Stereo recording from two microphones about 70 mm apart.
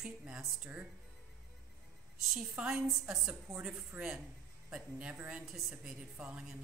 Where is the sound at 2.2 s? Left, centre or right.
Centre.